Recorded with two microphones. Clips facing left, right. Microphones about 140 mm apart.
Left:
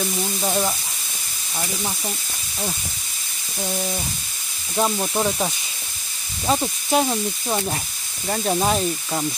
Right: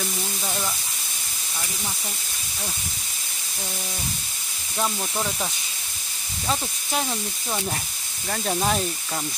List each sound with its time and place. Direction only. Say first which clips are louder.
0.4 s speech: left 8 dB; 35° left (ahead or behind)
4.7 s speech: left 5 dB; 25° left (ahead or behind)